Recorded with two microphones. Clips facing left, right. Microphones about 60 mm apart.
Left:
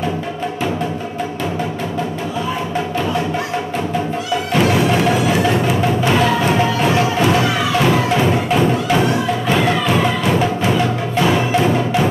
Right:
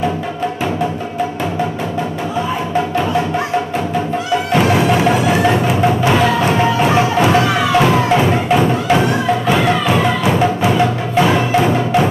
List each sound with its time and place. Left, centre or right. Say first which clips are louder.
4.6 s music: right 1 dB; centre